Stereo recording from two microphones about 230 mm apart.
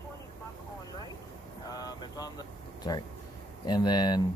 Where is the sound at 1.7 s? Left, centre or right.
Centre.